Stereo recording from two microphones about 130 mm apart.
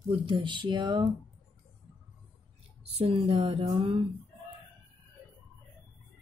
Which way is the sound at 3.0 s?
45° right (ahead or behind).